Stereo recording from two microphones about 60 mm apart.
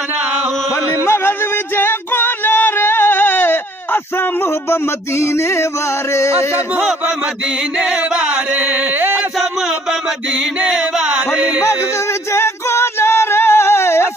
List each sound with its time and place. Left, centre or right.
1.0 s music: left
6.1 s a sound: left
7.8 s chant: centre; by 9.2 s right
9.4 s a sound: centre
10.3 s carnatic music: centre
11.3 s music: centre
11.6 s music: left